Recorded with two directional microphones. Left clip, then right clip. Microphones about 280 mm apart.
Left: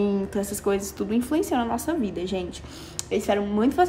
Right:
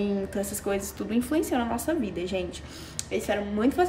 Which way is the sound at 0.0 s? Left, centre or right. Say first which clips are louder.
Left 3 dB; centre.